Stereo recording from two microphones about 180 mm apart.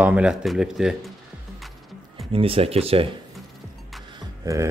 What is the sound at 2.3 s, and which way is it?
Speech, 30° right (ahead or behind).